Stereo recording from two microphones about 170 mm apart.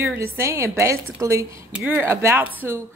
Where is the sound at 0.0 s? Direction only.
15° right (ahead or behind).